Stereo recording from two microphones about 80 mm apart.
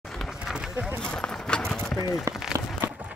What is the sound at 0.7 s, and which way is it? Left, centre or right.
Speech, right.